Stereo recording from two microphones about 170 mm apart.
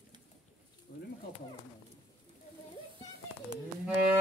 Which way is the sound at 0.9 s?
70° left (ahead or behind).